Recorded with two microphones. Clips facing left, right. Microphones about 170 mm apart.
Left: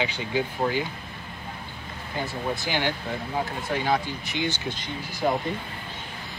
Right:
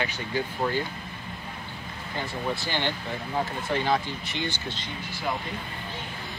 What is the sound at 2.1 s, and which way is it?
Speech, 15° left (ahead or behind).